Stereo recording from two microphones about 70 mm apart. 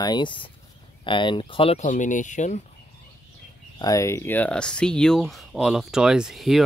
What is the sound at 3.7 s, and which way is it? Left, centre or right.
Speech, left.